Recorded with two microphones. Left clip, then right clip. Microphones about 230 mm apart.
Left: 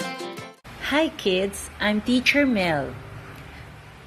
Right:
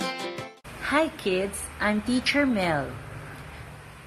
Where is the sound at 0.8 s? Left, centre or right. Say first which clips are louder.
Left 2 dB; left.